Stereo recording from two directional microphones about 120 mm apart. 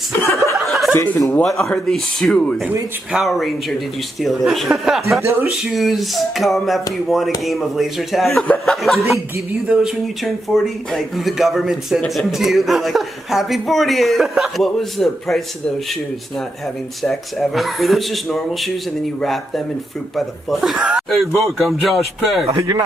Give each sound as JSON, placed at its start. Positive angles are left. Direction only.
{"t": 0.6, "sound": "chuckle", "side_deg": 0}
{"t": 0.9, "sound": "speech", "side_deg": 20}
{"t": 1.4, "sound": "speech", "side_deg": 5}
{"t": 5.2, "sound": "speech", "side_deg": -20}
{"t": 5.5, "sound": "speech", "side_deg": 0}
{"t": 17.0, "sound": "speech", "side_deg": 0}
{"t": 22.5, "sound": "speech", "side_deg": -30}